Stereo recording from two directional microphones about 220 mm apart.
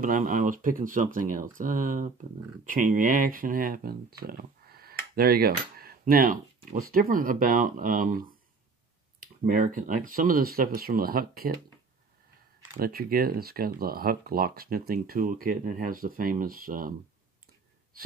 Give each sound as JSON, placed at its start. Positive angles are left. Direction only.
{"t": 0.0, "sound": "speech", "side_deg": -35}
{"t": 12.7, "sound": "speech", "side_deg": -45}
{"t": 17.9, "sound": "a sound", "side_deg": -40}